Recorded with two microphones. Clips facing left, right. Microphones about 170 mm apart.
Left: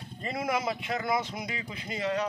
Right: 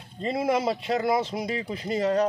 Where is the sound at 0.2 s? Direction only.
25° right (ahead or behind).